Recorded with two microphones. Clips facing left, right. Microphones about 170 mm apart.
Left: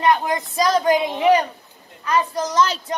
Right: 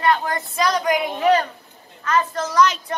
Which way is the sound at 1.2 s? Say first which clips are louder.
Right 1 dB; 15° left (ahead or behind).